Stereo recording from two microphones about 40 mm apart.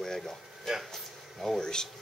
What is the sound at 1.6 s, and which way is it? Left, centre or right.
Speech, centre.